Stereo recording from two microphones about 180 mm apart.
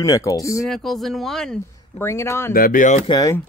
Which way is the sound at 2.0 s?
15° left (ahead or behind).